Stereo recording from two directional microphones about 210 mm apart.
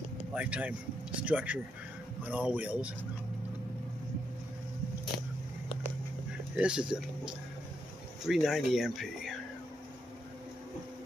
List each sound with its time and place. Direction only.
0.3 s speech: 5° right (ahead or behind)
6.5 s speech: 5° right (ahead or behind)